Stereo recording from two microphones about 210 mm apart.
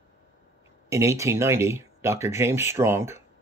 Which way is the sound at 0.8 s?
15° right (ahead or behind).